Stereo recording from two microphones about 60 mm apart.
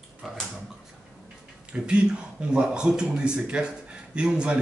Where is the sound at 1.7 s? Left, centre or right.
Centre.